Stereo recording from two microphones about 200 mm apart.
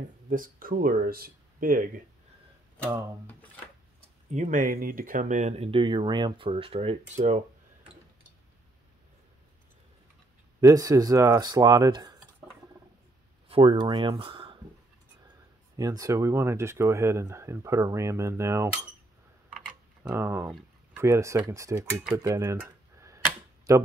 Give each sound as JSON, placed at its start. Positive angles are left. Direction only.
{"t": 0.3, "sound": "speech", "side_deg": -45}
{"t": 4.3, "sound": "speech", "side_deg": -40}
{"t": 10.6, "sound": "speech", "side_deg": -20}
{"t": 13.5, "sound": "speech", "side_deg": -25}
{"t": 15.7, "sound": "speech", "side_deg": -15}
{"t": 19.5, "sound": "a sound", "side_deg": -5}
{"t": 20.5, "sound": "speech", "side_deg": -10}
{"t": 22.0, "sound": "camera", "side_deg": -10}